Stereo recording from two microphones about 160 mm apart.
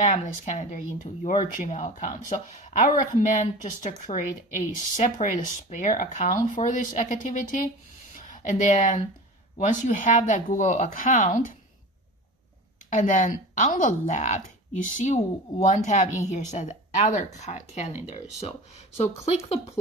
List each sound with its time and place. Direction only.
0.0 s speech: 50° left (ahead or behind)
12.9 s speech: 55° left (ahead or behind); by 19.6 s 40° left (ahead or behind)